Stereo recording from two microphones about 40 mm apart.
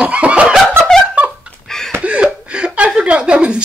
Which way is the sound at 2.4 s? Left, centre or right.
Right.